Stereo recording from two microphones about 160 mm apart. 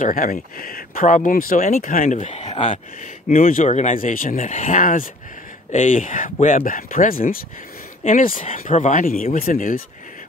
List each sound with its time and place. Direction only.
0.0 s speech: 60° left (ahead or behind)